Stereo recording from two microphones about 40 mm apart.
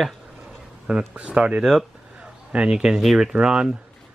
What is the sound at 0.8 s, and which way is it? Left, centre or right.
Speech, right.